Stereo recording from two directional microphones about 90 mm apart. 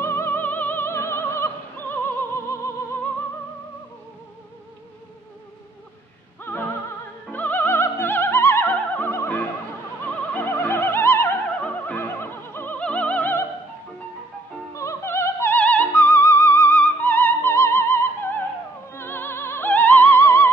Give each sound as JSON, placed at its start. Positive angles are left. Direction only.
{"t": 0.0, "sound": "opera", "side_deg": 25}
{"t": 7.2, "sound": "music", "side_deg": 20}
{"t": 11.6, "sound": "opera", "side_deg": 20}
{"t": 14.7, "sound": "music", "side_deg": 35}
{"t": 15.5, "sound": "music", "side_deg": 20}